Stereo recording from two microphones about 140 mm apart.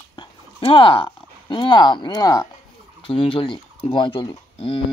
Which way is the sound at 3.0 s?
40° left (ahead or behind).